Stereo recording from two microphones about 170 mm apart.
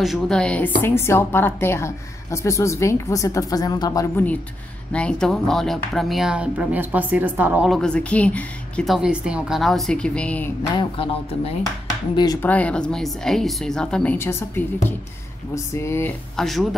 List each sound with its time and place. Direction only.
0.0 s a woman's voice: centre (ahead or behind); by 4.1 s 20° left (ahead or behind)
4.9 s speech: 5° left (ahead or behind)
10.8 s speech: 30° left (ahead or behind)
12.4 s a woman's voice: 10° left (ahead or behind)
16.3 s speech: centre (ahead or behind)